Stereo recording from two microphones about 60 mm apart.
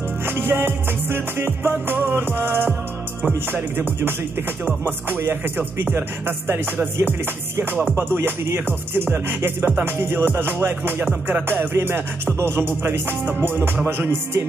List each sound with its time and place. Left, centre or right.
0.2 s music: right